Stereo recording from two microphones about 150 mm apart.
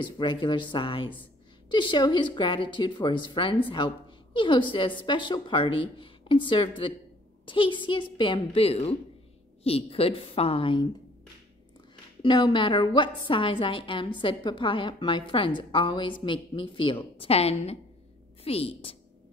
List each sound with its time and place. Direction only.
0.0 s a woman's voice: 30° left (ahead or behind)
12.2 s a woman's voice: 35° left (ahead or behind)
18.4 s a sound: 40° left (ahead or behind)